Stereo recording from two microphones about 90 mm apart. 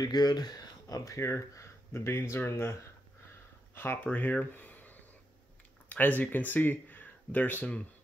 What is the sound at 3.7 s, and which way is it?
Speech, 20° left (ahead or behind).